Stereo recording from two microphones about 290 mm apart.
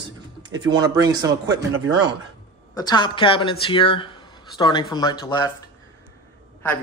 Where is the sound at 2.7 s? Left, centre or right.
Centre.